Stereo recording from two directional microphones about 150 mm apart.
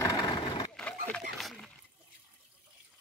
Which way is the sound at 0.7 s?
5° left (ahead or behind).